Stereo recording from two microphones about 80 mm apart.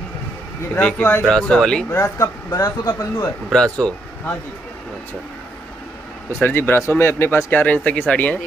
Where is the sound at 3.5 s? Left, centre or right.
Centre.